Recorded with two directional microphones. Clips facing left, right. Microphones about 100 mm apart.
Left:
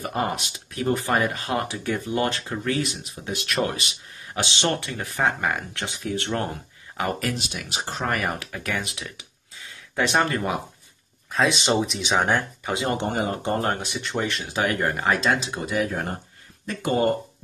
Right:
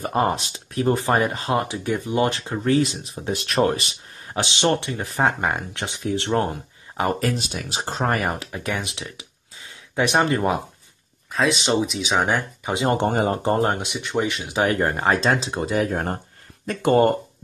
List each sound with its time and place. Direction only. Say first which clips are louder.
0.0 s speech: right 5 dB; 35° right (ahead or behind)
11.3 s speech: right 1 dB; centre (ahead or behind)
12.8 s speech: right 6 dB; 45° right (ahead or behind); by 14.6 s 15° right (ahead or behind)
14.6 s speech: right 3 dB; 30° right (ahead or behind)
16.6 s speech: right 5 dB; 55° right (ahead or behind)